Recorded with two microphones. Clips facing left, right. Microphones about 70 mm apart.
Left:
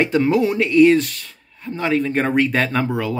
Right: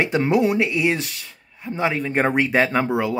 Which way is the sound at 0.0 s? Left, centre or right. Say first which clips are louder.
Left 2 dB; centre.